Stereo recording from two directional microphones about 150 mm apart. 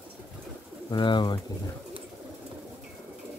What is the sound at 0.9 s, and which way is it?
Speech, 30° left (ahead or behind).